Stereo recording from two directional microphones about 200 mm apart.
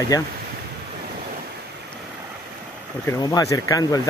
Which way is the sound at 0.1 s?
15° left (ahead or behind).